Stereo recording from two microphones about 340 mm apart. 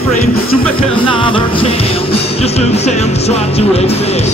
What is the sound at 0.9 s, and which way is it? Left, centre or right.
Music, centre.